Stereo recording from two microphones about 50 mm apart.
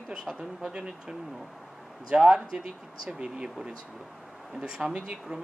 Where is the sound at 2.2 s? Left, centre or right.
Centre.